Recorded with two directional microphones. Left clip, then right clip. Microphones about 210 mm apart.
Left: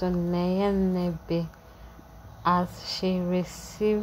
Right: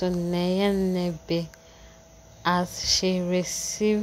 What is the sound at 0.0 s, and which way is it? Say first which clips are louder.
Speech: right 1 dB; 30° right (ahead or behind).